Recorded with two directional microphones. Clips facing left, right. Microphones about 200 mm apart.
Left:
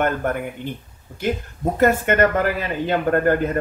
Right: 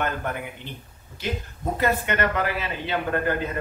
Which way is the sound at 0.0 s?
50° left (ahead or behind).